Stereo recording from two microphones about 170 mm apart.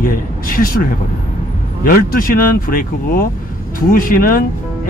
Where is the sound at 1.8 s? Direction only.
55° left (ahead or behind).